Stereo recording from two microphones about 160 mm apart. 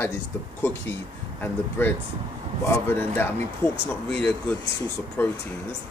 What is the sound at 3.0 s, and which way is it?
A man's voice, 15° left (ahead or behind).